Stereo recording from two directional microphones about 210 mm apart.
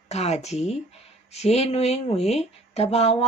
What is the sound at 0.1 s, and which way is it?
Speech, 30° left (ahead or behind).